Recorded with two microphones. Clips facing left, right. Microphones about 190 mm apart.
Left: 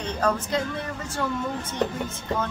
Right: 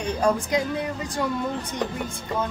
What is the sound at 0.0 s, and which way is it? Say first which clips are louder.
Speech: right 3 dB; 15° right (ahead or behind).